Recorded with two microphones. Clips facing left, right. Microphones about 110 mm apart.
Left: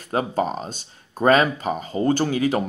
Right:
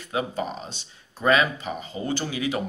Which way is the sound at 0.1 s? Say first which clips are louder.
Left 5 dB; 40° left (ahead or behind).